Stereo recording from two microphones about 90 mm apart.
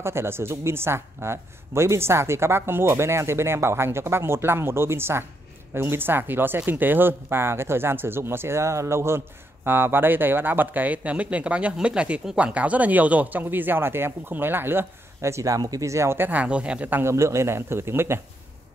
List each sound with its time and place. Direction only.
0.0 s speech: 30° right (ahead or behind)
17.0 s speech: 30° right (ahead or behind)